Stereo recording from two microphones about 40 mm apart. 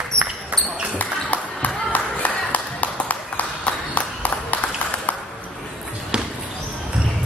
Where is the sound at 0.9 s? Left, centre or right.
Left.